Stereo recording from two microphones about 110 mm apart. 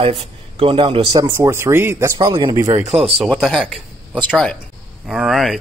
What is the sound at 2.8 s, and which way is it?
Speech, 75° right (ahead or behind).